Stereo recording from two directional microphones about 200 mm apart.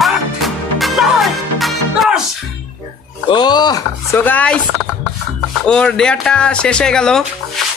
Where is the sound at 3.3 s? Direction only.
20° left (ahead or behind).